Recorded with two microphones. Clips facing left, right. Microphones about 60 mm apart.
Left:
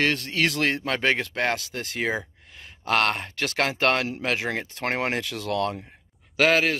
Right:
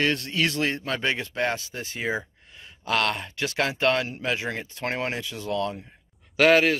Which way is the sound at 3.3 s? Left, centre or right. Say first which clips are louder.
Left 1 dB; left.